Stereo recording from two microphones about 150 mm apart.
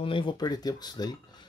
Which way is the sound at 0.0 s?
35° left (ahead or behind).